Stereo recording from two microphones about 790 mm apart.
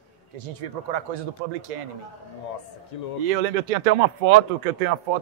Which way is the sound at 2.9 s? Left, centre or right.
Left.